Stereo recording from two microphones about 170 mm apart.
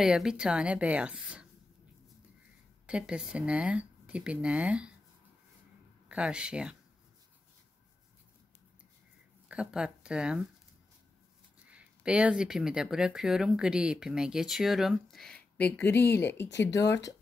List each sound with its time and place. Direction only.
0.0 s speech: 5° right (ahead or behind)
2.9 s speech: 5° right (ahead or behind)
6.0 s speech: 5° right (ahead or behind)
9.5 s speech: 5° right (ahead or behind)
11.6 s speech: 5° right (ahead or behind); by 17.1 s 20° left (ahead or behind)